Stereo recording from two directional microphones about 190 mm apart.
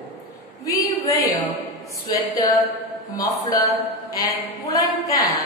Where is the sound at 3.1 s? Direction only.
20° left (ahead or behind).